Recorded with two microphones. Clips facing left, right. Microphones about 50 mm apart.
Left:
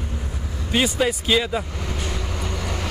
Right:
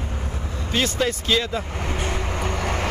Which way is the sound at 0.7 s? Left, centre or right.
Centre.